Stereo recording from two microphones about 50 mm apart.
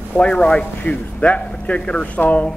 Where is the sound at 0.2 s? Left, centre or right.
Centre.